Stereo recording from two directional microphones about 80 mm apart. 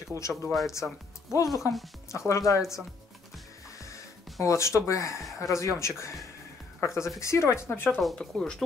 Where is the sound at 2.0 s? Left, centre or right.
Left.